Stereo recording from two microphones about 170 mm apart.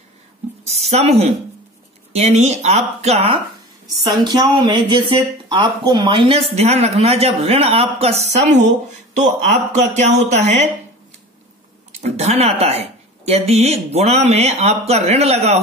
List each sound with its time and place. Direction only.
0.7 s speech: 40° right (ahead or behind)
4.2 s speech: 25° right (ahead or behind); by 10.7 s 40° right (ahead or behind)
12.0 s speech: 40° right (ahead or behind)